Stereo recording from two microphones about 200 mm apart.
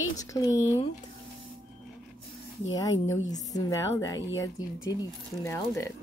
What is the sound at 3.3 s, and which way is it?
Speech, 20° left (ahead or behind).